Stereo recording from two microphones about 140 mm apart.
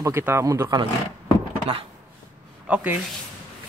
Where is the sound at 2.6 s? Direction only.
10° right (ahead or behind).